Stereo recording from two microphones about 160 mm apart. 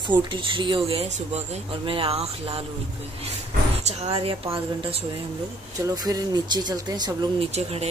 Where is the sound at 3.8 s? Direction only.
40° right (ahead or behind).